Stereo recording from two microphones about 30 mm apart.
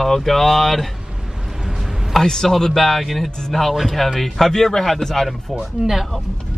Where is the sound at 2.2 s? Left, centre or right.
Centre.